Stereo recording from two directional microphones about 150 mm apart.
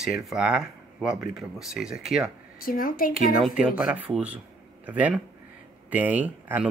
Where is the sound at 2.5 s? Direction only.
70° left (ahead or behind).